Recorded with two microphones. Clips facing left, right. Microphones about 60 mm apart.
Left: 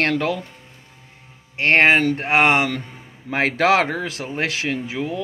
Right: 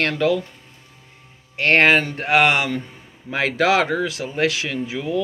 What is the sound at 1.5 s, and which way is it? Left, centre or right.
Speech, left.